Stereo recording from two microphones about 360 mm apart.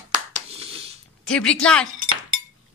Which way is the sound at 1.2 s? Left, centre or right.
Centre.